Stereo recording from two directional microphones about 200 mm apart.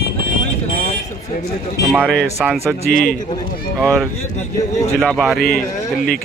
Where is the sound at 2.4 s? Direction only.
5° right (ahead or behind).